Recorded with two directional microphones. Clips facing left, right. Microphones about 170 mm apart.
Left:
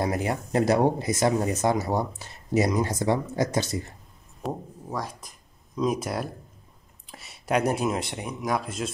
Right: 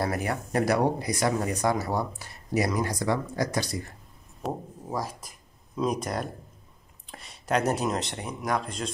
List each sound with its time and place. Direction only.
0.0 s speech: 20° left (ahead or behind)
4.4 s speech: 5° right (ahead or behind)